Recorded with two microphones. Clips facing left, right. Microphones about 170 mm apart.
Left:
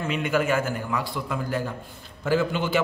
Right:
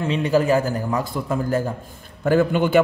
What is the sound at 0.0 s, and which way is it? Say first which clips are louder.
A man's voice: right 5 dB; 35° right (ahead or behind).